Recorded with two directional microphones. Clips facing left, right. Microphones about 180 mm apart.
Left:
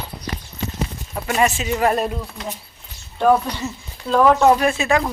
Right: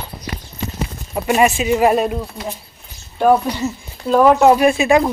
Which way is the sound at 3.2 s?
5° right (ahead or behind).